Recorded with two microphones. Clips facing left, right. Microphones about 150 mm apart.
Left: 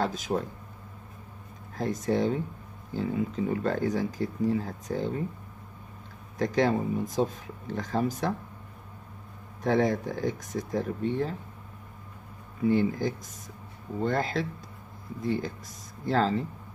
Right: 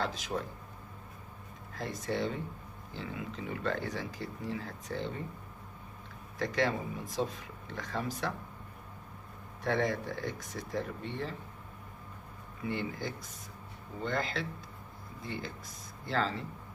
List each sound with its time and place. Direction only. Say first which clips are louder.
0.0 s speech: left 6 dB; 45° left (ahead or behind)
1.8 s speech: left 7 dB; 45° left (ahead or behind)
6.3 s speech: left 6 dB; 40° left (ahead or behind)
9.6 s speech: left 6 dB; 45° left (ahead or behind)
12.6 s speech: left 11 dB; 45° left (ahead or behind)